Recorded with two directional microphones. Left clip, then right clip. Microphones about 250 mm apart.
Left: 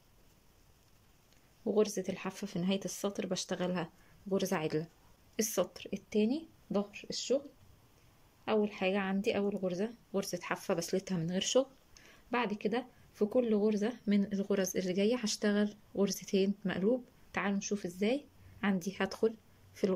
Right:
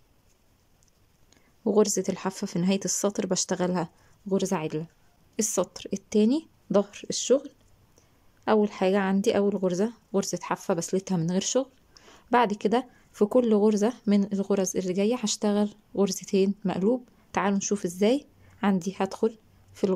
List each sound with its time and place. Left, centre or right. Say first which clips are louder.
1.6 s speech: right 8 dB; right